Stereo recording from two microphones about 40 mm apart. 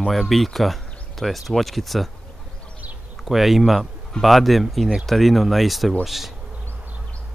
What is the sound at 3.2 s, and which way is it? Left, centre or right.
Speech, centre.